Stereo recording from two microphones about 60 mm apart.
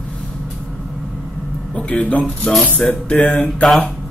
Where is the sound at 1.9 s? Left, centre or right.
Left.